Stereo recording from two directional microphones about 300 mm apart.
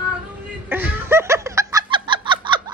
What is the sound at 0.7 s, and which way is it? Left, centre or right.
Snicker, centre.